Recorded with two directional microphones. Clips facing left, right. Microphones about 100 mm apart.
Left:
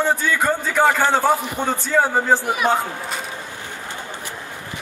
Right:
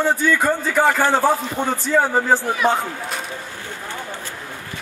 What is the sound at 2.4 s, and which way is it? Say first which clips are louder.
Speech: right 1 dB; 15° left (ahead or behind).